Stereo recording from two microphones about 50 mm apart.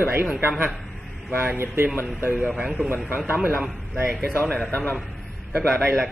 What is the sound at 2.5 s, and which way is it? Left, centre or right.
Speech, centre.